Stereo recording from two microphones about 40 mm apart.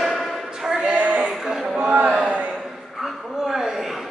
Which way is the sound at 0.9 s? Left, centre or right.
Right.